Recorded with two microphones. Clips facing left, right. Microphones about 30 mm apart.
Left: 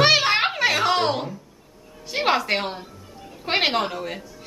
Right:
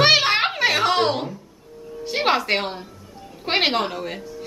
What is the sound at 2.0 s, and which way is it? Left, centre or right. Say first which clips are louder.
A woman's voice: right 1 dB; centre.